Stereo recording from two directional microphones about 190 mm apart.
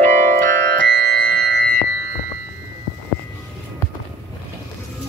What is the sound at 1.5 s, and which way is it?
Music, 50° right (ahead or behind).